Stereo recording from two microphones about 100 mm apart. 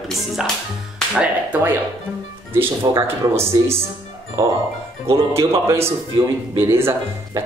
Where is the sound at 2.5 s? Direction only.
25° right (ahead or behind).